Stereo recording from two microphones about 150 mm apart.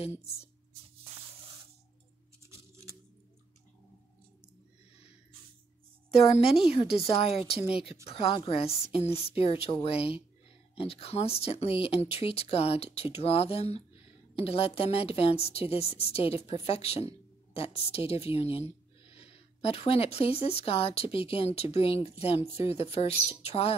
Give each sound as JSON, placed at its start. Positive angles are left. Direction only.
{"t": 0.2, "sound": "speech", "side_deg": 40}
{"t": 2.7, "sound": "a sound", "side_deg": -20}
{"t": 6.1, "sound": "speech", "side_deg": 40}